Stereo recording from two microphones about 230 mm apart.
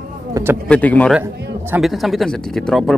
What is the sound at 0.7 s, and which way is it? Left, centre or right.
Speech, centre.